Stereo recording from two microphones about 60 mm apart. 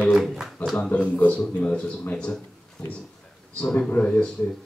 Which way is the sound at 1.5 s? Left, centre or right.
Centre.